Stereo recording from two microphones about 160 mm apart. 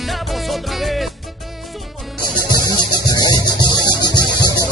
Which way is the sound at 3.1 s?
25° left (ahead or behind).